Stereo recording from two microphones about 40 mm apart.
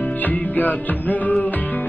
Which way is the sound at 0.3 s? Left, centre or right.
Left.